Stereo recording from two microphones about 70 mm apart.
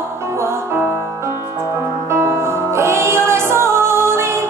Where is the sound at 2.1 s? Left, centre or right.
Right.